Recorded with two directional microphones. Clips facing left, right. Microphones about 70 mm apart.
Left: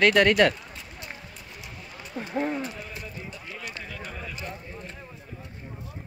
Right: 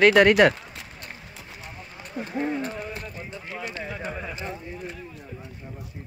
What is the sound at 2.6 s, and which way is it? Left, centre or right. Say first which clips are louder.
Run: right 4 dB; right.